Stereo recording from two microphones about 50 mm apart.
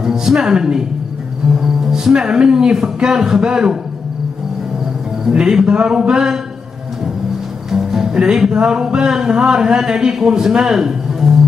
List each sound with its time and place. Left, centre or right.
0.0 s a man's voice: centre
5.3 s a man's voice: centre
7.7 s music: centre